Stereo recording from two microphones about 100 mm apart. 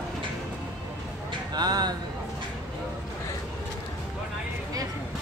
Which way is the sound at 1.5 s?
45° right (ahead or behind).